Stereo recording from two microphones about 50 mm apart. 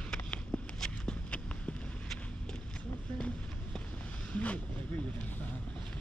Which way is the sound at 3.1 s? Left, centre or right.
Left.